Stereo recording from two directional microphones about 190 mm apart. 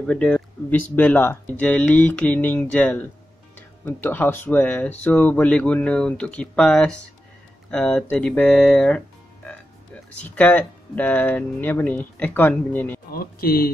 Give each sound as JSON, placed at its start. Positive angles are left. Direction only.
{"t": 0.0, "sound": "speech", "side_deg": 5}
{"t": 10.2, "sound": "speech", "side_deg": 10}
{"t": 13.1, "sound": "speech", "side_deg": 50}